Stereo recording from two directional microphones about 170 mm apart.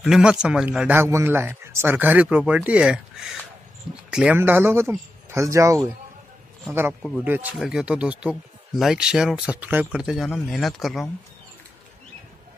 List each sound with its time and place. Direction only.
0.0 s speech: 5° right (ahead or behind)